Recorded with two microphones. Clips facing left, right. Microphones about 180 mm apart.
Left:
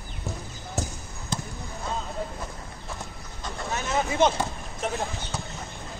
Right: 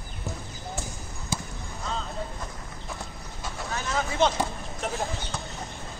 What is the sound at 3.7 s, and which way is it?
Vehicle, 20° left (ahead or behind).